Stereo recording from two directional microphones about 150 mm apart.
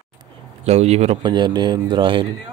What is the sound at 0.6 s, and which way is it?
Speech, 45° right (ahead or behind).